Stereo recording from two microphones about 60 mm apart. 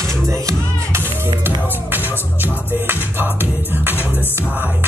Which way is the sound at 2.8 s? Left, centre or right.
Right.